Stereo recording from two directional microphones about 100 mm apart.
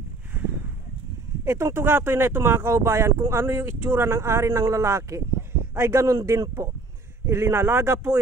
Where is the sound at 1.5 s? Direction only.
25° right (ahead or behind).